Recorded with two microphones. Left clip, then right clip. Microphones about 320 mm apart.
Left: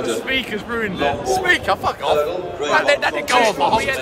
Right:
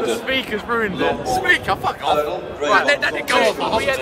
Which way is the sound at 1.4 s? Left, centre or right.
Centre.